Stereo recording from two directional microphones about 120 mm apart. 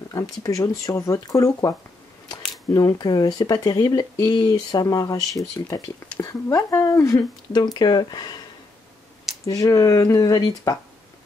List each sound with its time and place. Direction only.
0.1 s speech: 30° left (ahead or behind)
7.5 s speech: 35° left (ahead or behind)
9.5 s speech: 30° left (ahead or behind)